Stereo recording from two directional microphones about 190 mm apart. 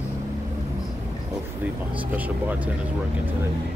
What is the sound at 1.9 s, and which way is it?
Speech, 10° right (ahead or behind).